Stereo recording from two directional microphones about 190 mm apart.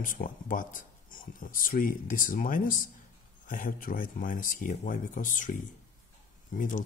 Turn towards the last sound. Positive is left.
turn(degrees=45)  # may be behind; listen again after turning